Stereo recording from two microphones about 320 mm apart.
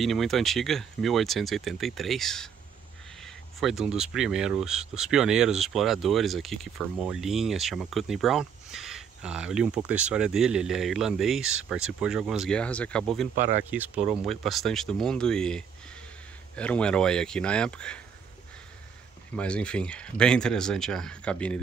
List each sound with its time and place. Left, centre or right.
0.0 s speech: centre
13.3 s speech: right
13.7 s speech: centre
19.3 s speech: centre